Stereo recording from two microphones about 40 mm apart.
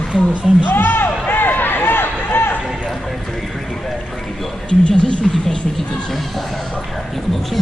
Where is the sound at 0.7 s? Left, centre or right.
Left.